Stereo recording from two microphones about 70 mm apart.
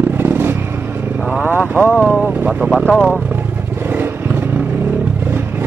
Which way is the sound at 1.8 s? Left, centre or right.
Right.